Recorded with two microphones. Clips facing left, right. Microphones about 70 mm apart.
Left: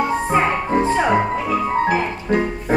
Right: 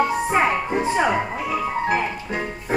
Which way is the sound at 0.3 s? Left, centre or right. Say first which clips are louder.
Left 2 dB; centre.